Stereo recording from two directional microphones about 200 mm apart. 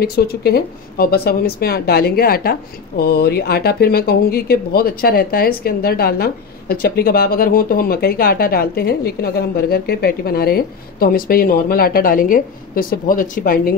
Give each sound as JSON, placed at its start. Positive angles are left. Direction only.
{"t": 0.0, "sound": "speech", "side_deg": 50}